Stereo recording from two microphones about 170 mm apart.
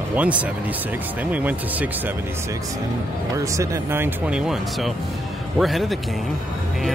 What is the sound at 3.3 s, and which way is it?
Speech, 15° right (ahead or behind).